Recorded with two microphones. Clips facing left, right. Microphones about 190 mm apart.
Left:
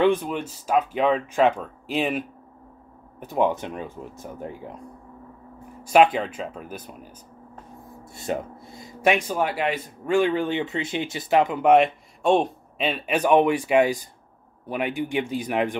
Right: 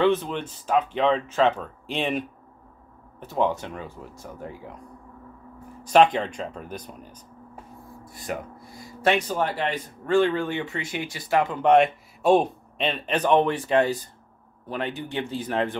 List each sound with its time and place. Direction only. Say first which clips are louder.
0.0 s speech: left 1 dB; 10° left (ahead or behind)
3.2 s speech: left 2 dB; 15° left (ahead or behind)
5.9 s speech: left 1 dB; 5° left (ahead or behind)
8.0 s speech: left 4 dB; 25° left (ahead or behind)
11.6 s speech: right 2 dB; centre (ahead or behind)